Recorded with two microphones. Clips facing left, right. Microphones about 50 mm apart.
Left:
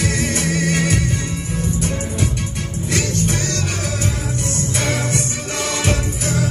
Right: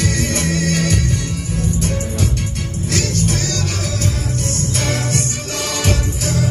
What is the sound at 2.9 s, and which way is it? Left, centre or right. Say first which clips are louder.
Music: right 1 dB; left.